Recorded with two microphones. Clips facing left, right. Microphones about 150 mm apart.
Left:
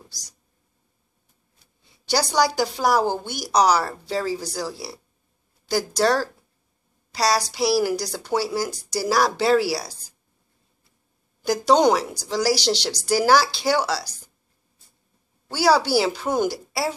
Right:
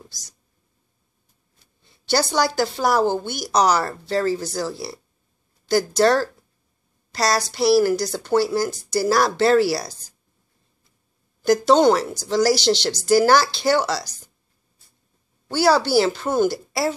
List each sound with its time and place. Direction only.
1.8 s speech: 10° left (ahead or behind)
11.4 s speech: 10° left (ahead or behind)
15.5 s speech: 10° left (ahead or behind)